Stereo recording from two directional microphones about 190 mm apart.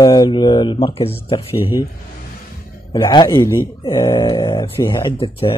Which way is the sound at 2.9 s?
25° left (ahead or behind).